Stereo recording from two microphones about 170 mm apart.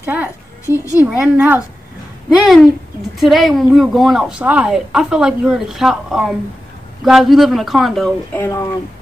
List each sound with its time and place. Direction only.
0.0 s a sound: 10° right (ahead or behind)
0.7 s a woman's voice: 20° left (ahead or behind)
0.9 s a woman's voice: 10° right (ahead or behind)
8.4 s speech: 20° left (ahead or behind)